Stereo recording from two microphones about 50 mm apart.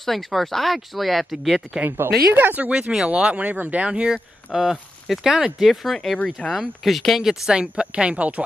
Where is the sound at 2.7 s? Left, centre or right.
Right.